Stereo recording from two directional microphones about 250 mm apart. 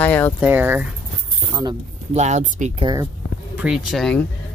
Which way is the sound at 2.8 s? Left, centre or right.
Centre.